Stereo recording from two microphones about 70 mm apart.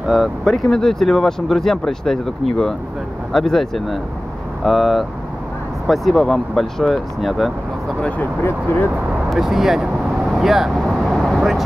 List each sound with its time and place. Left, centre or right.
0.0 s speech: centre
8.4 s speech: left
9.3 s vehicle: centre